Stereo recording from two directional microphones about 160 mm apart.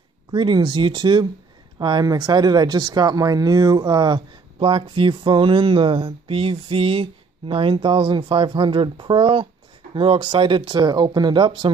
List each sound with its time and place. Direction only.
0.3 s speech: 30° right (ahead or behind)